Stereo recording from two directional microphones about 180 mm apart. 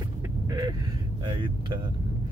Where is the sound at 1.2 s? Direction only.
25° right (ahead or behind).